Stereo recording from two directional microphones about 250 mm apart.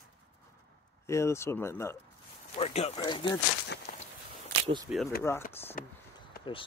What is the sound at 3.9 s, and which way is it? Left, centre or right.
Walk, left.